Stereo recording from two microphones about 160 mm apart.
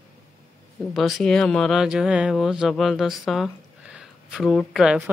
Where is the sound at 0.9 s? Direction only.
Centre (ahead or behind).